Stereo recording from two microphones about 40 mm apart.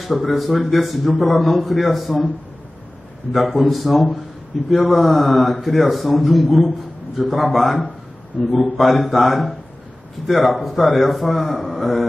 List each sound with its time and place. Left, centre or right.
0.0 s a man's voice: centre
3.3 s a man's voice: centre